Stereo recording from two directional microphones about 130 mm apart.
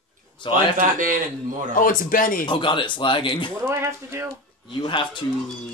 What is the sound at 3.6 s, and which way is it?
Speech, 20° right (ahead or behind).